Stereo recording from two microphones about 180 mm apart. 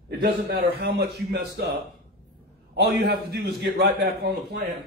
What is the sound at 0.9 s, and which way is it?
Speech, 65° right (ahead or behind).